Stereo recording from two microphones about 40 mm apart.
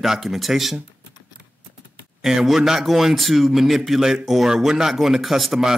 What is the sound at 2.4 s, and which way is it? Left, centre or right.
Speech, centre.